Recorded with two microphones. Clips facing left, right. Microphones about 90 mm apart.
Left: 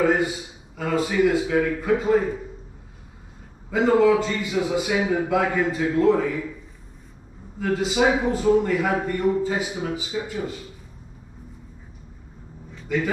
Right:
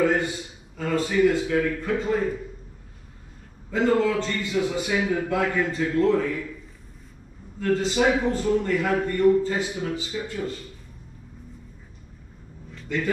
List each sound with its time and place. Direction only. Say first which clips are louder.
0.0 s a man's voice: left 2 dB; 10° left (ahead or behind)
3.7 s a man's voice: left 4 dB; 10° left (ahead or behind)
7.5 s a man's voice: even; 10° left (ahead or behind)
12.7 s vehicle: left 3 dB; 10° left (ahead or behind)